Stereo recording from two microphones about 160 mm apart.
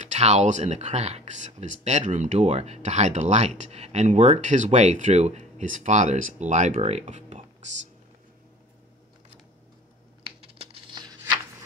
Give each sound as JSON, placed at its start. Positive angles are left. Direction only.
{"t": 0.0, "sound": "speech", "side_deg": -45}
{"t": 10.2, "sound": "tearing", "side_deg": -35}